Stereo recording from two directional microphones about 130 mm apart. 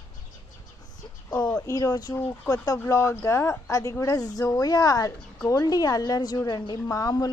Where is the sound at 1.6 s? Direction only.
25° left (ahead or behind).